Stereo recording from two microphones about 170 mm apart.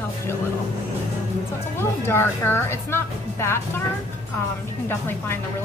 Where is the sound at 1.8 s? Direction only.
15° left (ahead or behind).